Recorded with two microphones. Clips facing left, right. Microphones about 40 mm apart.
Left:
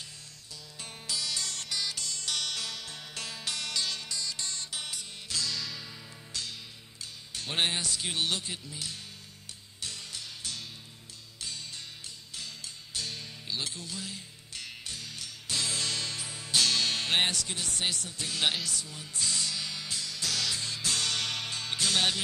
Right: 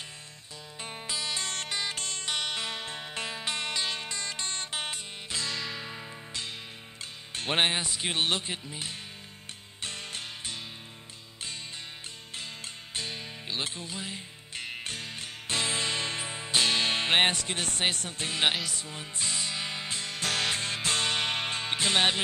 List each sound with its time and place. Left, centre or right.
0.7 s music: right
2.2 s music: right
8.1 s speech: right
9.8 s music: right
12.4 s music: right
18.4 s speech: right
18.9 s music: right